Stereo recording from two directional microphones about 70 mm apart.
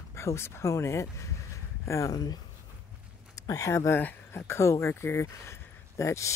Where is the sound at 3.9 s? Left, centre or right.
Left.